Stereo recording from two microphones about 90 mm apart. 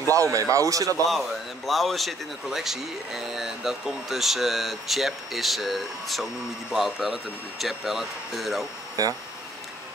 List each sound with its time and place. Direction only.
0.1 s speech: 40° right (ahead or behind)
1.7 s speech: centre (ahead or behind)